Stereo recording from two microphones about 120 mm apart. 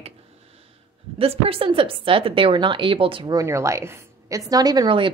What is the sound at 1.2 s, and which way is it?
Speech, 55° right (ahead or behind).